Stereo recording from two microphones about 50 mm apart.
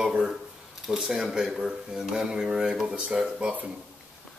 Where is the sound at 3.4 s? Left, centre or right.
Right.